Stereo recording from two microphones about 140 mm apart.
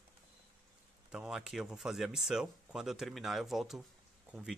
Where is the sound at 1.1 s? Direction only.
5° right (ahead or behind).